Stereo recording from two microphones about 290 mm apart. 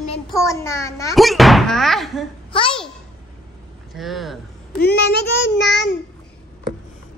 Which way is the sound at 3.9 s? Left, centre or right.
Centre.